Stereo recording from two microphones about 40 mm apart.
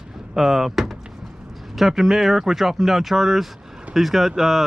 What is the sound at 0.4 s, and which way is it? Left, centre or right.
Speech, centre.